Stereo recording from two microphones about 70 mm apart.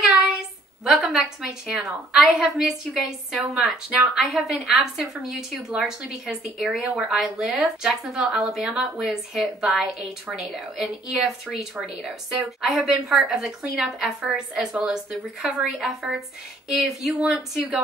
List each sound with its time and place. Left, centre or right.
1.0 s speech: centre
3.6 s speech: centre
4.2 s a woman's voice: centre